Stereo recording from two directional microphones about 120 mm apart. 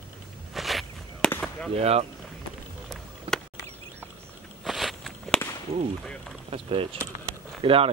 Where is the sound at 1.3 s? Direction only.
10° left (ahead or behind).